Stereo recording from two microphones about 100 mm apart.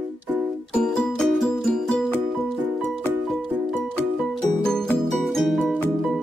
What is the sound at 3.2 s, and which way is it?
Music, centre (ahead or behind).